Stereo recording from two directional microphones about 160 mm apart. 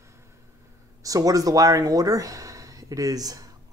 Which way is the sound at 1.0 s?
20° right (ahead or behind).